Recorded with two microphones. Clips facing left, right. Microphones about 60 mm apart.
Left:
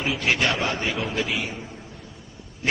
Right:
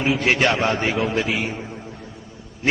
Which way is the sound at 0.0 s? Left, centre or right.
Right.